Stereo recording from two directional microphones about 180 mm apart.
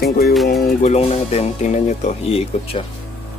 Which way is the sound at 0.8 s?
35° left (ahead or behind).